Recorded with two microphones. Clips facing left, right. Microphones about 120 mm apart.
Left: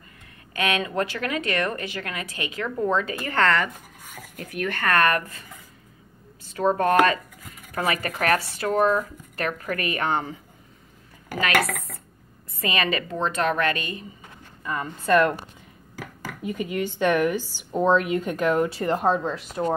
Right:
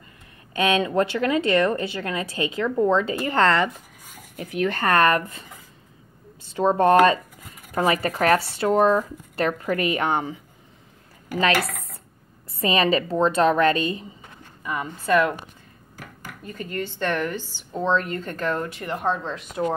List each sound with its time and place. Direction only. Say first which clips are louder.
0.5 s speech: right 4 dB; 30° right (ahead or behind)
6.4 s a sound: right 2 dB; 25° right (ahead or behind)
6.8 s speech: right 5 dB; 30° right (ahead or behind)
12.5 s speech: right 5 dB; 30° right (ahead or behind)
14.6 s a sound: right 1 dB; 15° right (ahead or behind)
15.0 s speech: left 1 dB; 5° right (ahead or behind)
16.4 s a woman's voice: left 4 dB; 10° left (ahead or behind)
18.7 s speech: left 3 dB; 35° left (ahead or behind)
19.2 s speech: left 2 dB; 5° left (ahead or behind)